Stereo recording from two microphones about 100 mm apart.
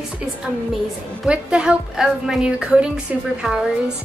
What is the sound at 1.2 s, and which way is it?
A woman's voice, 10° right (ahead or behind).